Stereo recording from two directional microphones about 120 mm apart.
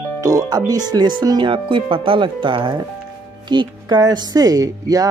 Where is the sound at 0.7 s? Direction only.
35° right (ahead or behind).